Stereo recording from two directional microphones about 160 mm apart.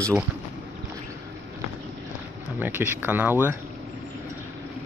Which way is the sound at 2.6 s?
10° right (ahead or behind).